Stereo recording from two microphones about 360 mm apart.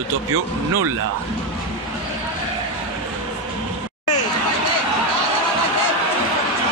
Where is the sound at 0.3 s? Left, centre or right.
Right.